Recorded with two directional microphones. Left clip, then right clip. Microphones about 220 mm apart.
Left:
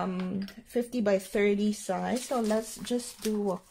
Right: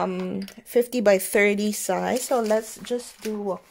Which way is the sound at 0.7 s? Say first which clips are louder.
Right 9 dB; 45° right (ahead or behind).